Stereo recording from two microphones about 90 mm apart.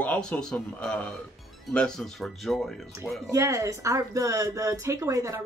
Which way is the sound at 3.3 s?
35° right (ahead or behind).